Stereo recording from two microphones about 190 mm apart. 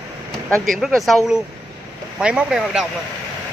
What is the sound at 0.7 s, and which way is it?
Speech, centre (ahead or behind).